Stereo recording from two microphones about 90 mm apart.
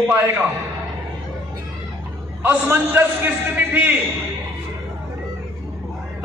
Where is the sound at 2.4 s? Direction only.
25° right (ahead or behind).